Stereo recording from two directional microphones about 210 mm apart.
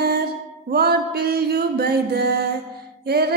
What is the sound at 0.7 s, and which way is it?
Mantra, 50° right (ahead or behind).